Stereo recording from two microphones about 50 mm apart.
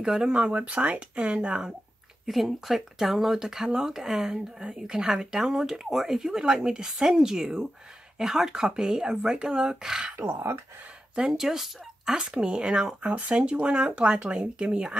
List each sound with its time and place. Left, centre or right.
0.0 s speech: centre
0.5 s speech: right
2.2 s speech: centre
10.1 s speech: right
11.1 s speech: centre